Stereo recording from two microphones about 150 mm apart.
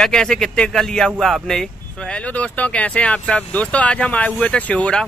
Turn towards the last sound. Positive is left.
turn(degrees=10)  # may be behind; listen again after turning